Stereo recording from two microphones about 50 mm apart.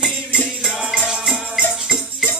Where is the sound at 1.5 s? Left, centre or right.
Centre.